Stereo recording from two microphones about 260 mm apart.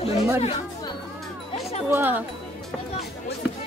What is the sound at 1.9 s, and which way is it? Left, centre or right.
Speech, centre.